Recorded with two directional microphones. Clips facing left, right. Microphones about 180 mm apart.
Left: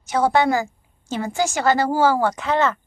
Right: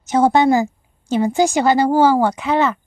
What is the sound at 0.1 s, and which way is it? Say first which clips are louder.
A woman's voice: right 5 dB; 25° right (ahead or behind).